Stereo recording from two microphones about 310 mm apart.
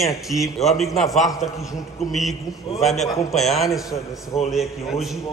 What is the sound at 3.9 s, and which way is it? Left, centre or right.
Speech, left.